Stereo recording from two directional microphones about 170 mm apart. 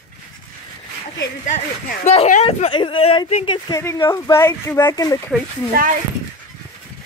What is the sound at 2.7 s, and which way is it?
Speech, 30° left (ahead or behind).